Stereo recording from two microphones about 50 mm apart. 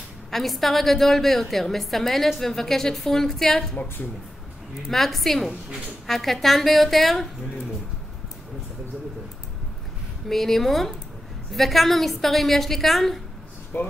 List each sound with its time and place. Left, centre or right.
0.3 s a woman's voice: centre
3.7 s a woman's voice: left
4.8 s a woman's voice: centre
10.2 s a woman's voice: centre
13.7 s a woman's voice: left